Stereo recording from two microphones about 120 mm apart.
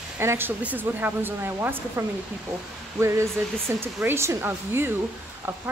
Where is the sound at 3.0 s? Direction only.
25° right (ahead or behind).